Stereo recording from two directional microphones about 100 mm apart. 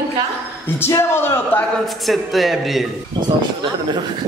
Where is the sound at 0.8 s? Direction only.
25° left (ahead or behind).